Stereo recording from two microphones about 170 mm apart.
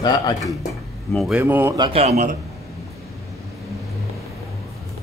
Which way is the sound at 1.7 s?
35° right (ahead or behind).